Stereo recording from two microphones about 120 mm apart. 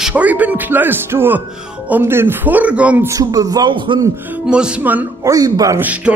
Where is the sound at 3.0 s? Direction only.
30° right (ahead or behind).